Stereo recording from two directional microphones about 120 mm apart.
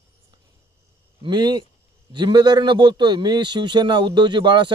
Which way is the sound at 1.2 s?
40° right (ahead or behind).